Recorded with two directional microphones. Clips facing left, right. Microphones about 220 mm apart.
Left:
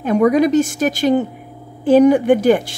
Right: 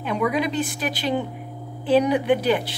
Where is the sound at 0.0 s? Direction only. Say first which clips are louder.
Left 10 dB; 45° left (ahead or behind).